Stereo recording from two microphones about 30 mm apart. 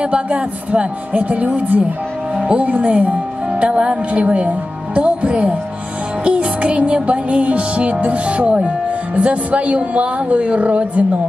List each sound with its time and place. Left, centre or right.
0.0 s music: right
2.6 s speech: right
3.7 s speech: right
4.5 s music: right